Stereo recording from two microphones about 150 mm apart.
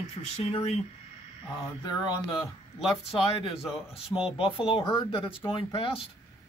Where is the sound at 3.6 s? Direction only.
5° right (ahead or behind).